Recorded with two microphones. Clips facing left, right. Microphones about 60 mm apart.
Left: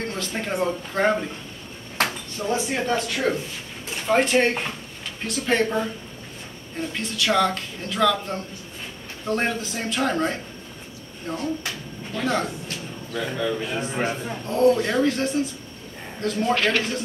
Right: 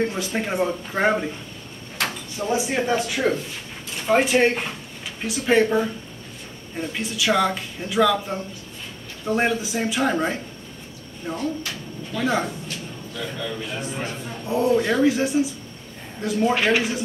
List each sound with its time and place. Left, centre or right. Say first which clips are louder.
0.0 s speech: right 4 dB; centre
2.3 s speech: right 3 dB; centre
13.1 s speech: left 5 dB; left
14.4 s speech: left 1 dB; centre